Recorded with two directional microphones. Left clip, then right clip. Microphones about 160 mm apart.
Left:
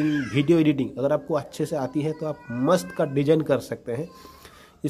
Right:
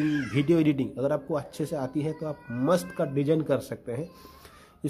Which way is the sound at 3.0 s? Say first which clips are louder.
Left 5 dB; 25° left (ahead or behind).